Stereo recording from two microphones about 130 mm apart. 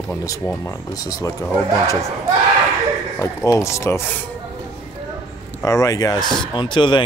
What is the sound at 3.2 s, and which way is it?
Speech, 25° left (ahead or behind).